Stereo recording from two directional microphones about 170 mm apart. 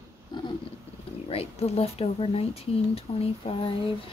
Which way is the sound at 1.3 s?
35° left (ahead or behind).